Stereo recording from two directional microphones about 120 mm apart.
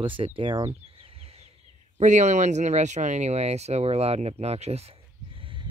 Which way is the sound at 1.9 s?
75° right (ahead or behind).